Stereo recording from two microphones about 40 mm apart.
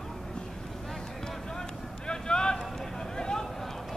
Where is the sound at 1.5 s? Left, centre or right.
Centre.